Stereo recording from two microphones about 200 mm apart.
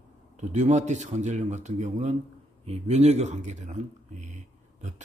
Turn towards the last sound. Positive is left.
turn(degrees=-35)  # may be behind; listen again after turning